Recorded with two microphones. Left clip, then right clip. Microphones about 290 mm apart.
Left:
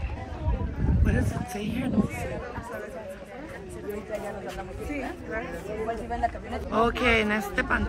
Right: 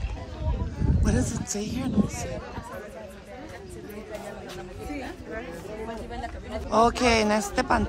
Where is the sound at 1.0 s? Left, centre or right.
Centre.